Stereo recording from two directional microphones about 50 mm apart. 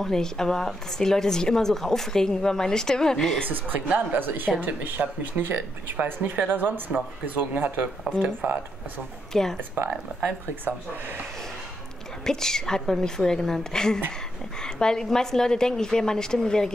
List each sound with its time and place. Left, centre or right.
0.0 s speech: centre
3.4 s speech: right
9.3 s speech: centre
12.3 s speech: centre